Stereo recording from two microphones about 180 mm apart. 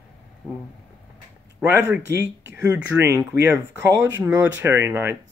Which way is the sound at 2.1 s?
75° right (ahead or behind).